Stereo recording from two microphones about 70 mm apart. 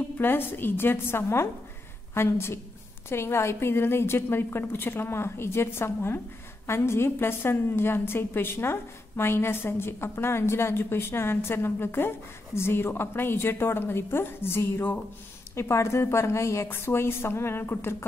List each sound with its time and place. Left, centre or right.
0.2 s a woman's voice: left